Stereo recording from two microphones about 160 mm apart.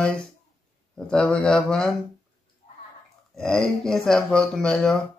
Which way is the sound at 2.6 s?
45° left (ahead or behind).